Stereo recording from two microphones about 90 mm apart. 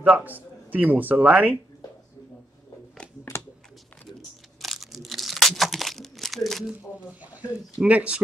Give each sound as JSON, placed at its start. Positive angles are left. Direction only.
{"t": 0.0, "sound": "a man's voice", "side_deg": -15}
{"t": 3.3, "sound": "a sound", "side_deg": 30}
{"t": 4.6, "sound": "crumpling", "side_deg": 0}
{"t": 6.7, "sound": "speech", "side_deg": -15}